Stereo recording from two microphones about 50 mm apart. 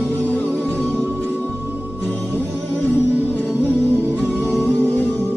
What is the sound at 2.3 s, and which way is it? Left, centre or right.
Music, left.